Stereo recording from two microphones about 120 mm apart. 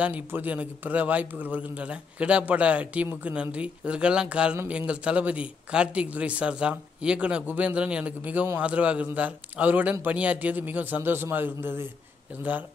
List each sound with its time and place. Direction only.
0.0 s a man's voice: 15° right (ahead or behind)